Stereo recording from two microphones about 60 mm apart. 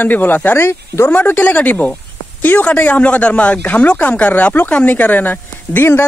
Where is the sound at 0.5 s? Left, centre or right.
Left.